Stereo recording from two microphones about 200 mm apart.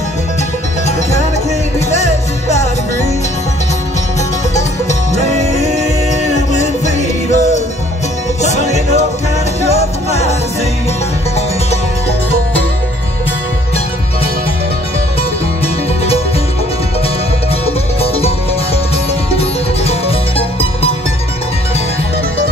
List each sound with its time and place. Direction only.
4.6 s music: 35° left (ahead or behind)
6.3 s music: 35° left (ahead or behind)
17.6 s music: 30° left (ahead or behind)
19.3 s music: 30° left (ahead or behind)